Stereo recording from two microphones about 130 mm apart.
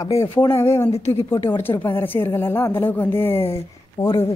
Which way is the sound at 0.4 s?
20° left (ahead or behind).